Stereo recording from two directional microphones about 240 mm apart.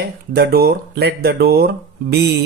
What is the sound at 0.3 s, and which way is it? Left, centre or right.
Speech, right.